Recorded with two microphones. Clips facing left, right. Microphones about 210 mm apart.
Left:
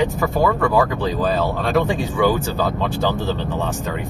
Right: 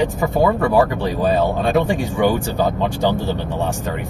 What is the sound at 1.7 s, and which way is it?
Speech, 15° right (ahead or behind).